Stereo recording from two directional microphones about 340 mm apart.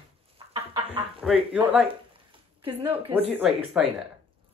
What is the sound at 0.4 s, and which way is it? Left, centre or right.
Chicken, centre.